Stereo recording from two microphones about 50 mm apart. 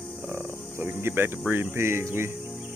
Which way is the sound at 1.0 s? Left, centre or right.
Right.